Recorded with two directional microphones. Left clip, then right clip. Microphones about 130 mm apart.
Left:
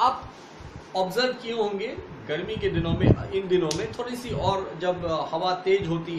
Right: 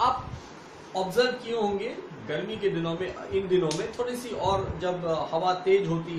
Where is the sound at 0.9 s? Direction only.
20° left (ahead or behind).